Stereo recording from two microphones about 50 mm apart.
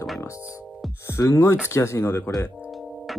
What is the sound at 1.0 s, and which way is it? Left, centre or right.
Speech, left.